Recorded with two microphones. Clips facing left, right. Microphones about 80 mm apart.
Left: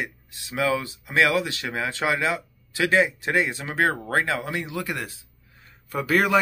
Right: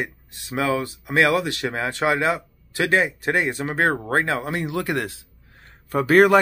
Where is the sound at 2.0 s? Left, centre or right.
Right.